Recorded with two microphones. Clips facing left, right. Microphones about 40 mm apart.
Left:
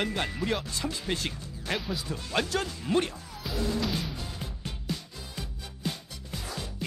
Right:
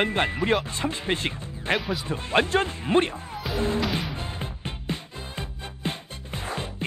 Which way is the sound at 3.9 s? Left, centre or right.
Right.